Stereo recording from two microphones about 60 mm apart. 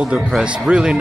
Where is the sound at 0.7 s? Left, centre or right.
Centre.